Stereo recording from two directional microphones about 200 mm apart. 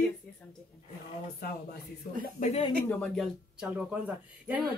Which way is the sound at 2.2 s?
40° left (ahead or behind).